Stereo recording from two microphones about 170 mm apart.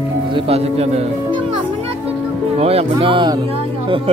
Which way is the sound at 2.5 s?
35° right (ahead or behind).